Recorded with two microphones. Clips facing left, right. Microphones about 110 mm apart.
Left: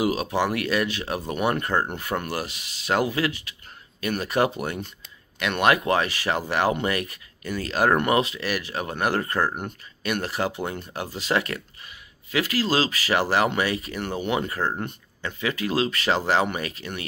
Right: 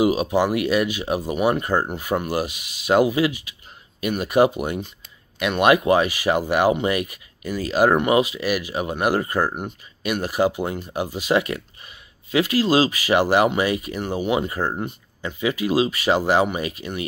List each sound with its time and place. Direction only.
0.0 s speech: 15° right (ahead or behind)